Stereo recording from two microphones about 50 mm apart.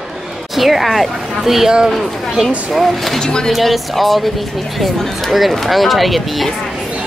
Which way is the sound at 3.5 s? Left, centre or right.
Centre.